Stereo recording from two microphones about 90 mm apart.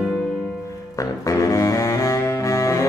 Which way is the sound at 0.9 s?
40° left (ahead or behind).